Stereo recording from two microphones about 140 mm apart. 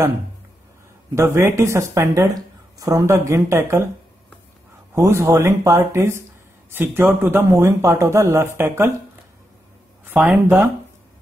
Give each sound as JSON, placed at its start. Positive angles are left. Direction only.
{"t": 1.1, "sound": "speech", "side_deg": -20}
{"t": 4.9, "sound": "speech", "side_deg": -20}
{"t": 10.1, "sound": "speech", "side_deg": -10}